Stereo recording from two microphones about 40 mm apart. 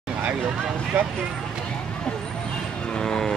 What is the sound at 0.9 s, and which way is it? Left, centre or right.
Speech, right.